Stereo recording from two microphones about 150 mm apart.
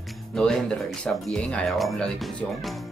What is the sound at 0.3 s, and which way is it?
Speech, 5° left (ahead or behind).